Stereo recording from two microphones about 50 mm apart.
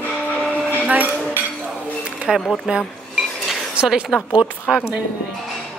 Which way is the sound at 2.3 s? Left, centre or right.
Centre.